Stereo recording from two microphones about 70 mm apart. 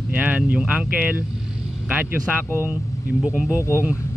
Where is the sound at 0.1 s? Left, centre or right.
Centre.